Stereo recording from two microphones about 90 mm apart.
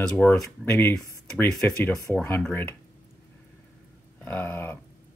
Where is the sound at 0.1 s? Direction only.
25° left (ahead or behind).